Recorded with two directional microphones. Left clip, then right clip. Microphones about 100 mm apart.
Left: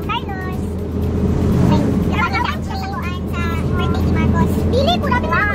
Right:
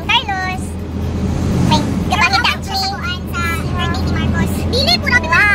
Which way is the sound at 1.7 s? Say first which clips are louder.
Right 3 dB; 30° right (ahead or behind).